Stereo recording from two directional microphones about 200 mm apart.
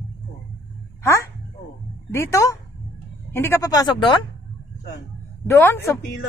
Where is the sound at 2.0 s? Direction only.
10° left (ahead or behind).